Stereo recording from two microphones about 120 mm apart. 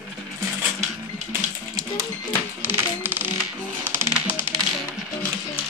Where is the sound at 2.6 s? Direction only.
15° right (ahead or behind).